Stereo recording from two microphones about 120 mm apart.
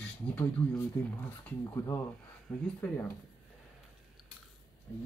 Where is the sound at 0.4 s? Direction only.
15° left (ahead or behind).